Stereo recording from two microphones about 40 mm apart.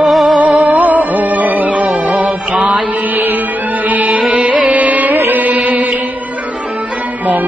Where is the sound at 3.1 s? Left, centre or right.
Right.